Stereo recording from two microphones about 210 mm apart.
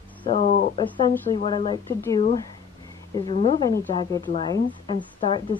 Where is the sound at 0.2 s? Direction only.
35° left (ahead or behind).